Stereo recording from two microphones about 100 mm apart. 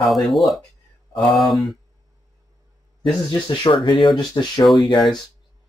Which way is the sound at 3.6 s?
50° left (ahead or behind).